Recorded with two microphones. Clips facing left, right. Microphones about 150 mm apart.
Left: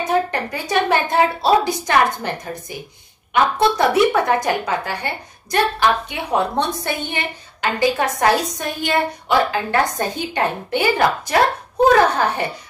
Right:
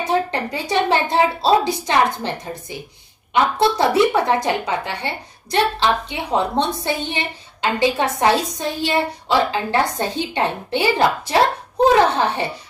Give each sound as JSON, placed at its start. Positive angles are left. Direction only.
{"t": 0.3, "sound": "a woman's voice", "side_deg": -25}